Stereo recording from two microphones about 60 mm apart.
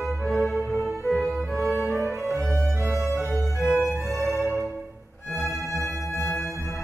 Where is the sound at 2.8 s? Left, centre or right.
Right.